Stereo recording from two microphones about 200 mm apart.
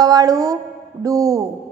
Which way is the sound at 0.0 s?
20° right (ahead or behind).